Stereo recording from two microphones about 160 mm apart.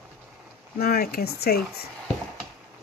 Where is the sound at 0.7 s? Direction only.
75° left (ahead or behind).